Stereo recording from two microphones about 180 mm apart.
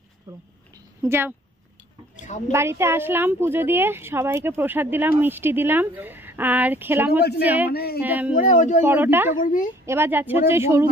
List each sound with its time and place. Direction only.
1.0 s a woman's voice: 15° right (ahead or behind)
2.2 s a woman's voice: 40° left (ahead or behind)
2.5 s a woman's voice: 15° right (ahead or behind)
7.1 s a woman's voice: 60° left (ahead or behind)
8.0 s a woman's voice: 10° right (ahead or behind)
8.4 s speech: 45° left (ahead or behind)
8.8 s a woman's voice: 10° right (ahead or behind)
9.4 s speech: 45° left (ahead or behind)
9.8 s a woman's voice: 10° right (ahead or behind)